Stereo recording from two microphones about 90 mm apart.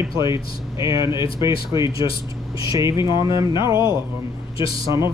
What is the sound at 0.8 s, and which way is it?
Speech, 35° right (ahead or behind).